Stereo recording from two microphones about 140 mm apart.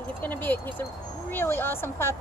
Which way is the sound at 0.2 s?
15° left (ahead or behind).